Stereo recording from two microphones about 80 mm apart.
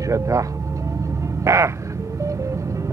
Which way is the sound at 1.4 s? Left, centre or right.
Right.